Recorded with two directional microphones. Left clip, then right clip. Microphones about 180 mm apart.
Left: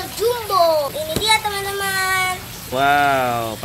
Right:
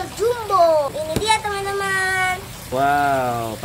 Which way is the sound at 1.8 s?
Centre (ahead or behind).